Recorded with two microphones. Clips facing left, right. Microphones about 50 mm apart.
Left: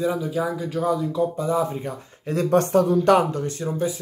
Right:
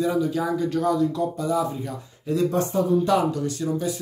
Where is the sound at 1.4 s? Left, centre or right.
Left.